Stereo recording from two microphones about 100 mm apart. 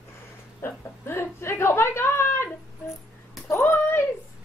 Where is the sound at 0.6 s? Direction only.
25° left (ahead or behind).